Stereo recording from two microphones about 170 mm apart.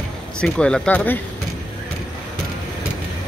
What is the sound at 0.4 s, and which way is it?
Speech, 5° left (ahead or behind).